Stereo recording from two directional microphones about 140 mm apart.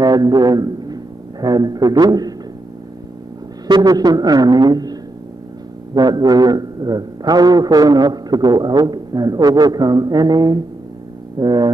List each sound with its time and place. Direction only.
0.0 s a man's voice: 30° right (ahead or behind)
3.6 s a man's voice: 30° right (ahead or behind)
5.9 s a man's voice: 30° right (ahead or behind)